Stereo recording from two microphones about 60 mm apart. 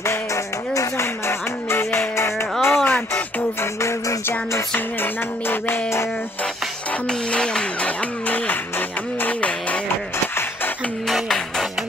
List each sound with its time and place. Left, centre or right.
0.0 s music: left
2.6 s a sound: left
3.8 s music: left
4.7 s music: left
7.1 s music: centre
10.1 s music: left
11.1 s music: centre